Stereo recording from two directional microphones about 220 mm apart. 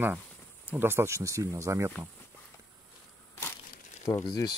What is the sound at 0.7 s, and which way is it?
Speech, 10° right (ahead or behind).